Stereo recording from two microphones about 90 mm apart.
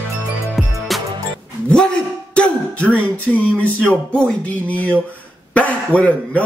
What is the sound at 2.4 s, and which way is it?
Music, 15° left (ahead or behind).